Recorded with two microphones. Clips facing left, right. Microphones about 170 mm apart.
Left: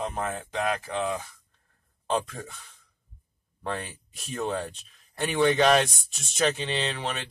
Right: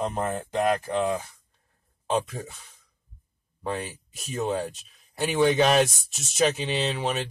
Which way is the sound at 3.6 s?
Centre (ahead or behind).